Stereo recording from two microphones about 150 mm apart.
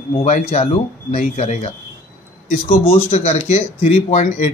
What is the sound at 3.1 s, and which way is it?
A man's voice, 45° left (ahead or behind).